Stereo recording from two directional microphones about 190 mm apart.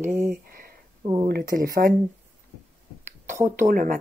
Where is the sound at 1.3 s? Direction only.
55° right (ahead or behind).